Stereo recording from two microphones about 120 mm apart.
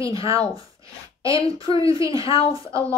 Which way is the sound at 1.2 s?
30° right (ahead or behind).